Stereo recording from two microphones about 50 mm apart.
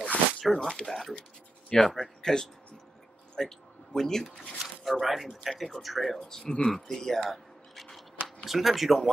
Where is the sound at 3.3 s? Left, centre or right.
Centre.